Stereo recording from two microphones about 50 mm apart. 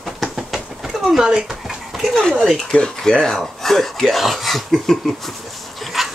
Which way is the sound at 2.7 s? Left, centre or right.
Centre.